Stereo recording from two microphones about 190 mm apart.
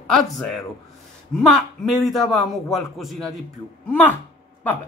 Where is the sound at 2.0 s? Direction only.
Centre (ahead or behind).